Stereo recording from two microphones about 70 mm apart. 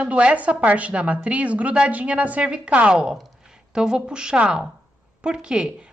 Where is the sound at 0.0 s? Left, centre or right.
Centre.